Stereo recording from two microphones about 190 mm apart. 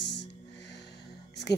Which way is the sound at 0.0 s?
65° left (ahead or behind).